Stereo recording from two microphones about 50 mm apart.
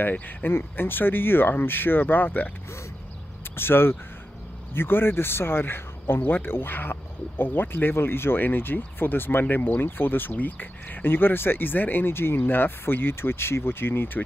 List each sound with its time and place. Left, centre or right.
0.5 s speech: left
3.5 s speech: left